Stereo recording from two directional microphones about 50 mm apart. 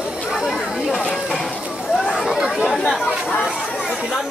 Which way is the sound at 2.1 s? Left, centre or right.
Centre.